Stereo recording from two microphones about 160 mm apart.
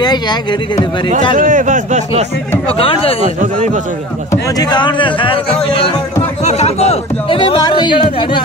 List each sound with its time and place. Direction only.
0.0 s speech: 25° left (ahead or behind)
1.3 s speech: 55° right (ahead or behind)
2.8 s speech: 35° left (ahead or behind)
3.2 s speech: 45° right (ahead or behind)
4.3 s speech: 25° left (ahead or behind)
6.4 s a sound: 45° left (ahead or behind)